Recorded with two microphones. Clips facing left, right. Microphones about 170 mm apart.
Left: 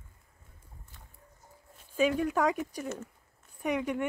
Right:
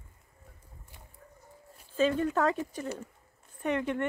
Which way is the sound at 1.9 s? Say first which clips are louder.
Even; 10° left (ahead or behind).